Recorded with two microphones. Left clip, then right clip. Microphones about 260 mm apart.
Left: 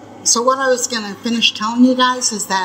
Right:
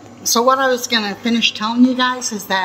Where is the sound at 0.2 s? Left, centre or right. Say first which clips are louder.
Right 1 dB; centre.